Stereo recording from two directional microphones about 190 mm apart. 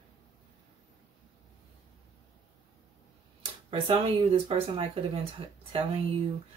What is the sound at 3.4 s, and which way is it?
Speech, 30° right (ahead or behind).